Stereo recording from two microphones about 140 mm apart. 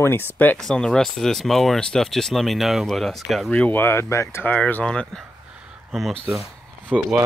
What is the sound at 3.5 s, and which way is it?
Speech, 15° left (ahead or behind).